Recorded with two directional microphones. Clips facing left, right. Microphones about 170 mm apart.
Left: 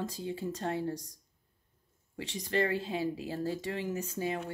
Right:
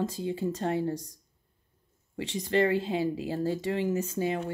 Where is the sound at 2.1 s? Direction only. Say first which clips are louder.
Right 5 dB; 25° right (ahead or behind).